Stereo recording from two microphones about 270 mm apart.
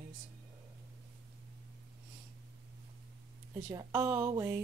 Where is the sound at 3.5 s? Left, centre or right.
Centre.